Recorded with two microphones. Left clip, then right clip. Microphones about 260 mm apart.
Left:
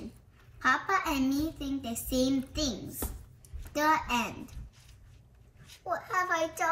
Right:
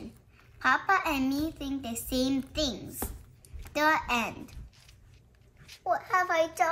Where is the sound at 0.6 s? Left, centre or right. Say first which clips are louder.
Right 2 dB; right.